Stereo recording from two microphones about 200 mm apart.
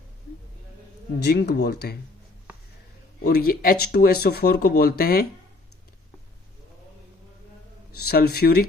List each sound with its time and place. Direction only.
1.2 s speech: 50° left (ahead or behind)
3.3 s speech: 50° left (ahead or behind)
8.1 s speech: 50° left (ahead or behind)